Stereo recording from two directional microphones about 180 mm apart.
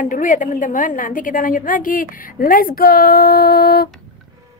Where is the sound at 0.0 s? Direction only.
45° left (ahead or behind).